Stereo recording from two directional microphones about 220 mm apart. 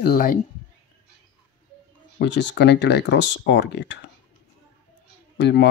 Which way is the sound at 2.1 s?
50° left (ahead or behind).